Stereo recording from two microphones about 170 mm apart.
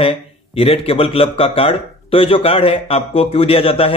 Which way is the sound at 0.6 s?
35° left (ahead or behind).